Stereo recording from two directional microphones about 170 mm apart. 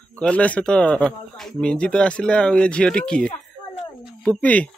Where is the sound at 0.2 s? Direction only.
5° left (ahead or behind).